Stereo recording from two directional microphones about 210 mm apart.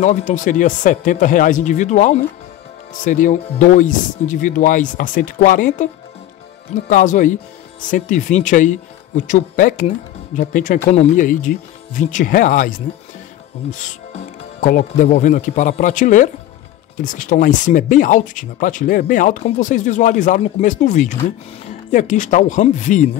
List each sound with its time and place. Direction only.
0.0 s speech: 35° left (ahead or behind)
6.9 s speech: 40° left (ahead or behind)